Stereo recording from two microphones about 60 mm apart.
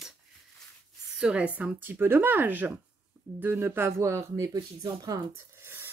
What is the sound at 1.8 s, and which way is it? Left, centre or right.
Speech, right.